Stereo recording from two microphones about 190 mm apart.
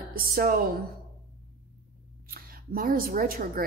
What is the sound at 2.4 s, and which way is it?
A woman's voice, 50° right (ahead or behind).